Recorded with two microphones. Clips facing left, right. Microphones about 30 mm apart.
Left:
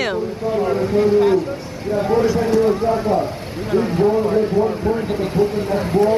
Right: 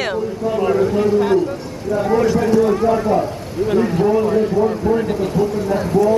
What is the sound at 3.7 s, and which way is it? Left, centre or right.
Speech, centre.